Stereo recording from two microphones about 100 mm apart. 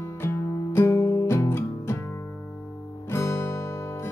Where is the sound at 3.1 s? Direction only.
30° left (ahead or behind).